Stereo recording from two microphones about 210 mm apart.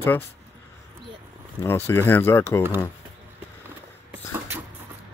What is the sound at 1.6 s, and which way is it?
Speech, 10° left (ahead or behind).